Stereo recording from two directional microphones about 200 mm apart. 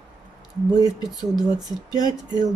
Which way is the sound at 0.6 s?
20° right (ahead or behind).